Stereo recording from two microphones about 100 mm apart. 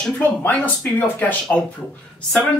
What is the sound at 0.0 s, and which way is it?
Speech, 15° left (ahead or behind).